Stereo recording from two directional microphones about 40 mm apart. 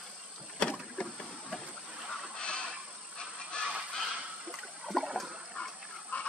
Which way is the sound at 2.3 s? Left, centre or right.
Left.